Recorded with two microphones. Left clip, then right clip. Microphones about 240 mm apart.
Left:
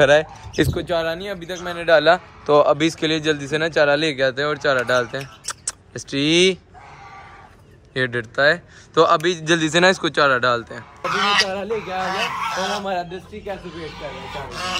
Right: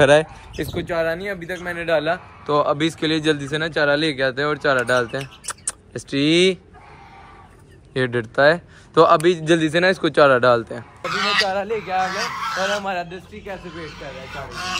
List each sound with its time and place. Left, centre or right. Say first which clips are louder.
0.0 s a man's voice: even; centre
1.8 s a man's voice: left 6 dB; left
2.4 s a man's voice: left 3 dB; centre
7.9 s a man's voice: right 1 dB; centre